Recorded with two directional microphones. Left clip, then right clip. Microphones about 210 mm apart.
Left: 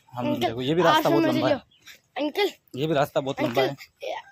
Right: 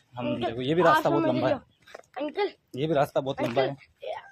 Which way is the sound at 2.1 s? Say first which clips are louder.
Left 4 dB; 55° left (ahead or behind).